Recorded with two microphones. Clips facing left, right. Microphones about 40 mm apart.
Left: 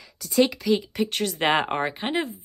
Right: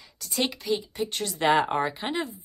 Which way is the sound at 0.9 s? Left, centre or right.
Left.